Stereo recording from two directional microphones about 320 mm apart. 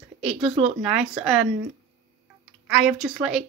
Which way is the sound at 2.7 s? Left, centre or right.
Centre.